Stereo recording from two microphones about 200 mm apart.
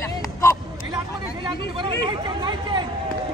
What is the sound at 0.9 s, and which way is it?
Hubbub, 25° right (ahead or behind).